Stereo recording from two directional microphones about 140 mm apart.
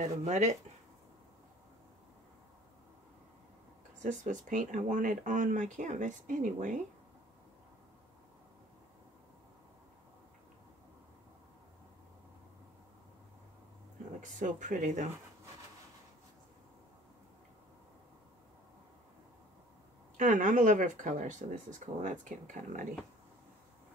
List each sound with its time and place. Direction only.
0.0 s speech: 55° right (ahead or behind)
4.0 s speech: 60° right (ahead or behind)
14.2 s speech: 60° right (ahead or behind)
20.2 s speech: 65° right (ahead or behind)